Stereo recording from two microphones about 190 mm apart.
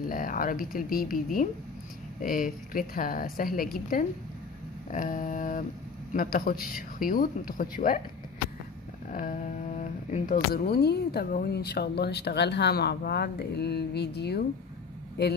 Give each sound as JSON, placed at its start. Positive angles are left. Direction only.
{"t": 0.1, "sound": "a woman's voice", "side_deg": 45}
{"t": 9.1, "sound": "speech", "side_deg": 45}